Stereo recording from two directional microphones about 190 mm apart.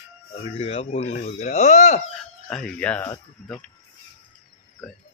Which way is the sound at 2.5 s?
5° left (ahead or behind).